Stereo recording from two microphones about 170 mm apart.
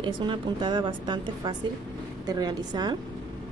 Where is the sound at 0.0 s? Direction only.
25° right (ahead or behind).